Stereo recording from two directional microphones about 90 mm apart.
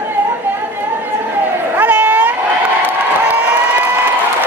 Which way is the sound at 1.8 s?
20° right (ahead or behind).